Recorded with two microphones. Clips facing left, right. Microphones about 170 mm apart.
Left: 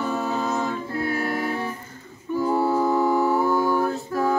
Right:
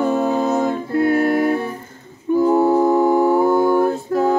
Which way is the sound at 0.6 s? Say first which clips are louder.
Right 8 dB; 50° right (ahead or behind).